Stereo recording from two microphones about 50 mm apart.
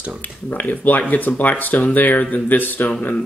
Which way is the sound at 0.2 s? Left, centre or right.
Left.